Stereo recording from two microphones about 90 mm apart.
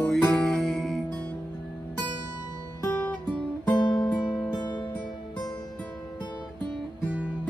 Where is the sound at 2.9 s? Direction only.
15° left (ahead or behind).